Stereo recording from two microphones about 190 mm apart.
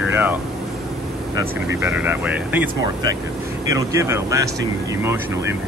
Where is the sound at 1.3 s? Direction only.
10° right (ahead or behind).